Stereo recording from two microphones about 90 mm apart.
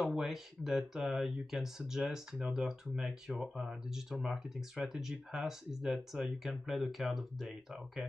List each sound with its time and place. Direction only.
0.0 s speech: 5° right (ahead or behind)